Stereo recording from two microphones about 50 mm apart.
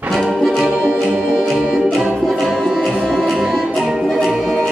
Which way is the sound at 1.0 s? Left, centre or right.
Centre.